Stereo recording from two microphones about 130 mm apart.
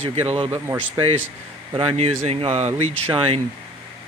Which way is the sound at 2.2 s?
55° right (ahead or behind).